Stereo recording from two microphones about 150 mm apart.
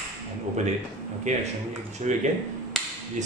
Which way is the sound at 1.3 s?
50° right (ahead or behind).